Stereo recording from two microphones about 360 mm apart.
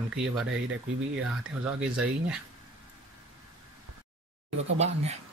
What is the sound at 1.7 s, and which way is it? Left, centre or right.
Speech, centre.